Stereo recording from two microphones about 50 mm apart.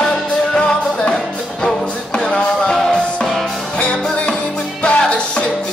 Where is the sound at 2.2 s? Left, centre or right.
Centre.